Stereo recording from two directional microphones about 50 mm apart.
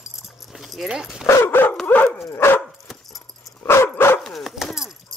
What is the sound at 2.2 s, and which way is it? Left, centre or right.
Dog, left.